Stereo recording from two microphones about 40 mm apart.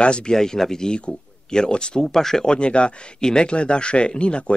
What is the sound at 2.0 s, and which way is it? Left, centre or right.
Speech, centre.